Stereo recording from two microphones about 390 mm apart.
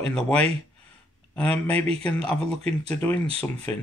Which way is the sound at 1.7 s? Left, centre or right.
Centre.